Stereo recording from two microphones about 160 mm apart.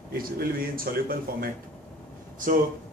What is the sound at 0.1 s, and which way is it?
Speech, 70° right (ahead or behind).